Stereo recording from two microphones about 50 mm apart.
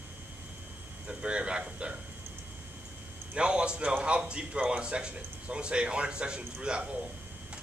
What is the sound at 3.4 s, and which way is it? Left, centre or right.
A man's voice, centre.